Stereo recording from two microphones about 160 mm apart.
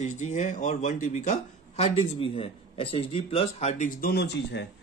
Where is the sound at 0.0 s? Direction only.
45° left (ahead or behind).